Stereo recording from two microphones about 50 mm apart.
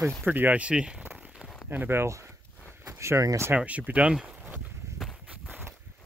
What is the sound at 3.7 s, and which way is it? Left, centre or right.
Speech, right.